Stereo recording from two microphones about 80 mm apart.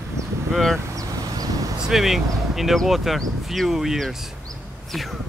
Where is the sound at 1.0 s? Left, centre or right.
Right.